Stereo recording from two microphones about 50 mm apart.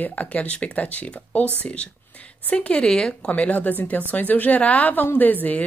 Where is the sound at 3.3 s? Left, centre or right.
Left.